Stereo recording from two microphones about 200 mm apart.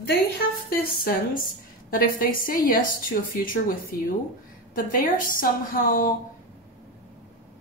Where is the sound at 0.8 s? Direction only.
45° left (ahead or behind).